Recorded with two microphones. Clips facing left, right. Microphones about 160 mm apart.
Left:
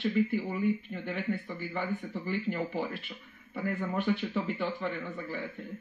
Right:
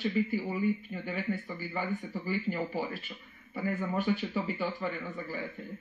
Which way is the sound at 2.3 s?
5° right (ahead or behind).